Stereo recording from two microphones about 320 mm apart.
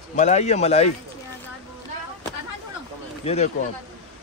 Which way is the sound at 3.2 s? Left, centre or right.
Centre.